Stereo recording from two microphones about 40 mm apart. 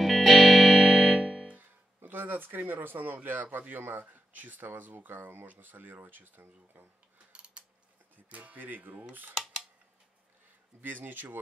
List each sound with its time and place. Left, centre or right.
0.0 s music: centre
1.5 s music: right
3.5 s speech: right
7.3 s a sound: right
8.3 s speech: right
9.3 s cutlery: centre
10.8 s speech: right